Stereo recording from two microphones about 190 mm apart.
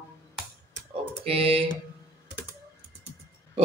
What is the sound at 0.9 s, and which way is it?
Typing, 30° right (ahead or behind).